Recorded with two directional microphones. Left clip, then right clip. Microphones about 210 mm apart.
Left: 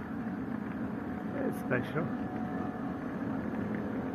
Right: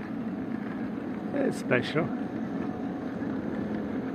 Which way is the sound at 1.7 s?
25° right (ahead or behind).